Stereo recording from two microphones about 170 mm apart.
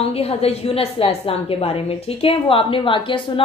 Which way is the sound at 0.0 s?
35° left (ahead or behind).